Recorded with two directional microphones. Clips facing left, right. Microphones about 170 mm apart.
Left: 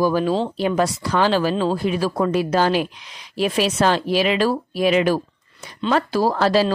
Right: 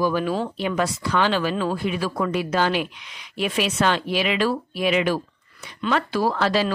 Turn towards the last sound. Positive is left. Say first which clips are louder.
# left 4 dB
turn(degrees=40)  # may be behind; listen again after turning